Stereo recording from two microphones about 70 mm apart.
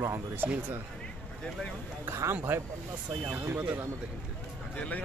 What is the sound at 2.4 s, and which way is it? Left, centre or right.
A man's voice, right.